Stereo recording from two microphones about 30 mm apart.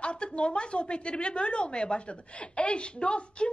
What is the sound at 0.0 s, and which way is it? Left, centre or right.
A woman's voice, left.